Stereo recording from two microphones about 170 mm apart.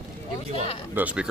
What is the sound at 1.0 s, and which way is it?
Speech, 10° right (ahead or behind).